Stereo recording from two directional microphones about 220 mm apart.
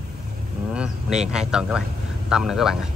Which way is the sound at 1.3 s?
5° right (ahead or behind).